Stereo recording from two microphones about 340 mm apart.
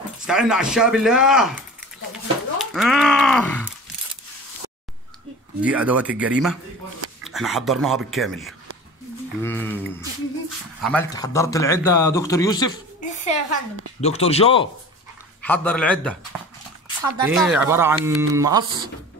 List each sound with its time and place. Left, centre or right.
0.3 s speech: centre
2.6 s speech: centre
5.6 s speech: centre
10.8 s speech: centre
15.4 s speech: centre